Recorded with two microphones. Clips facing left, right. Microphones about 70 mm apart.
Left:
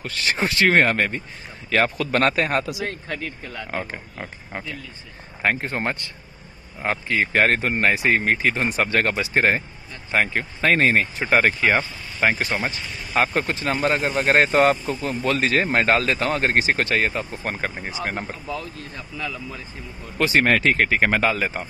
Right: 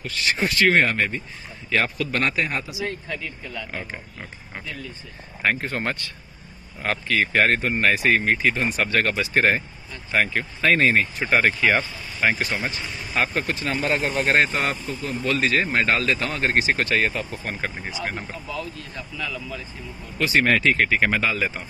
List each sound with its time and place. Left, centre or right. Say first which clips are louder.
0.0 s a man's voice: even; left
3.9 s speech: left 3 dB; left; by 7.2 s centre
7.3 s speech: left 2 dB; left
7.9 s speech: right 1 dB; left
8.2 s speech: even; left
20.2 s speech: left 1 dB; left